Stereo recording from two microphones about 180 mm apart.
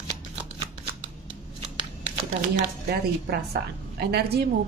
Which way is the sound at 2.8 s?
60° right (ahead or behind).